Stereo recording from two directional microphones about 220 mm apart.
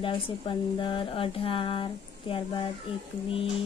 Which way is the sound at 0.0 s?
20° left (ahead or behind).